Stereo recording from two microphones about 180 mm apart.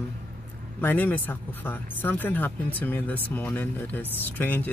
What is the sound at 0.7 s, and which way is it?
Speech, 10° left (ahead or behind).